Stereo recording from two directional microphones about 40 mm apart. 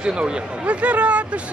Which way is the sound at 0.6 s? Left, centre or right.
Right.